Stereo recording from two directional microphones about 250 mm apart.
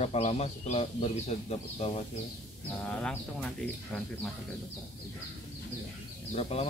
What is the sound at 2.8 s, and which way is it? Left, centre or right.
Speech, centre.